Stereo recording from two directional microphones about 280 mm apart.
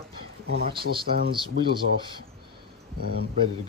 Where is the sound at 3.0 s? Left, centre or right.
Right.